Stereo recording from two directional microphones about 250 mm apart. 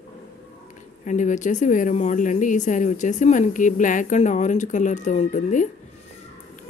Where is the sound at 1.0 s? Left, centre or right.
Left.